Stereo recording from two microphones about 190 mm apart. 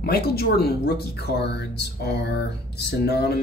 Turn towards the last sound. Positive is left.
turn(degrees=60)  # may be behind; listen again after turning